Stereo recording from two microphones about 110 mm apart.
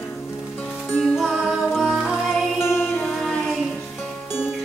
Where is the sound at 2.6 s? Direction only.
20° left (ahead or behind).